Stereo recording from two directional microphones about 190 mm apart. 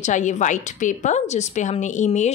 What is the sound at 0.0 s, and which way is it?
A woman's voice, 40° left (ahead or behind).